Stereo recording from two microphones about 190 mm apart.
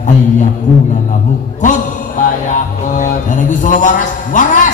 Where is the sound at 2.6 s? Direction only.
40° left (ahead or behind).